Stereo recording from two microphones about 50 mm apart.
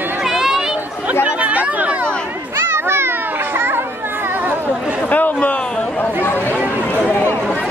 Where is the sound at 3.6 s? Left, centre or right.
Right.